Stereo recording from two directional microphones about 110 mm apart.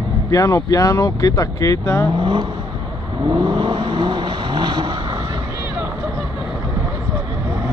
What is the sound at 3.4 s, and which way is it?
Vehicle, 45° right (ahead or behind).